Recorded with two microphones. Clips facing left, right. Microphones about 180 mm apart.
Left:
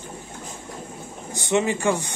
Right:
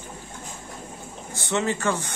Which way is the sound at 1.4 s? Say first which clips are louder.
Left 3 dB; 15° left (ahead or behind).